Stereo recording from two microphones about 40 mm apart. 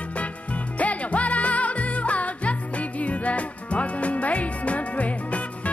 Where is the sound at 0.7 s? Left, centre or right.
Left.